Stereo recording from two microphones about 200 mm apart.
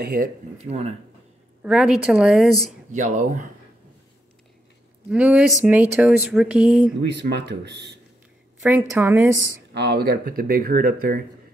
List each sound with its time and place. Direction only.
0.0 s speech: 45° right (ahead or behind)
0.6 s speech: 30° right (ahead or behind)
1.6 s speech: 5° right (ahead or behind)
2.9 s speech: 40° right (ahead or behind)
5.1 s speech: 5° right (ahead or behind)
7.0 s speech: 55° right (ahead or behind)
8.6 s a woman's voice: 10° right (ahead or behind)
9.8 s speech: 55° right (ahead or behind)